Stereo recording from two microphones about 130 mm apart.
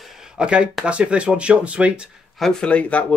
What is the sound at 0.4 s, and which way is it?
Speech, 5° right (ahead or behind).